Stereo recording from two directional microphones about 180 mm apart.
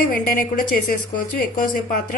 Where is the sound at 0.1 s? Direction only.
50° left (ahead or behind).